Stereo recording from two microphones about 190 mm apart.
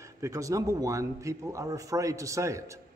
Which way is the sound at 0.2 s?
15° right (ahead or behind).